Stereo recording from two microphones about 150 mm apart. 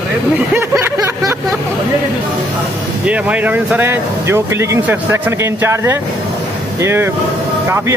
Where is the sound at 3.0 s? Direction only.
10° right (ahead or behind).